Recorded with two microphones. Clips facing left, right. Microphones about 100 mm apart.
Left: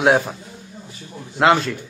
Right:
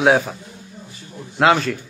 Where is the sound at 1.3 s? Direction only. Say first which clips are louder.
Even; centre (ahead or behind).